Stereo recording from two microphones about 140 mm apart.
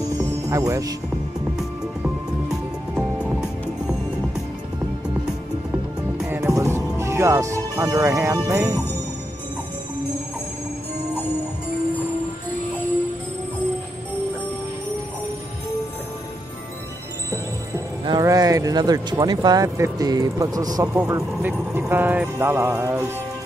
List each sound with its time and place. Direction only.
0.5 s speech: 25° right (ahead or behind)
2.4 s music: 10° right (ahead or behind)
6.1 s music: 10° right (ahead or behind)
6.5 s music: 25° right (ahead or behind)
7.0 s speech: 20° right (ahead or behind)
18.0 s speech: 25° right (ahead or behind)